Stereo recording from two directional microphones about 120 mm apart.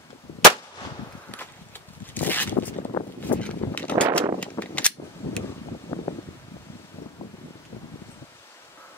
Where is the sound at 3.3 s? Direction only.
10° left (ahead or behind).